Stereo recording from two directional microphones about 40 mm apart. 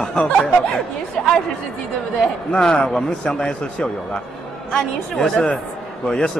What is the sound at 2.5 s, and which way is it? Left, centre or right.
A man's voice, left.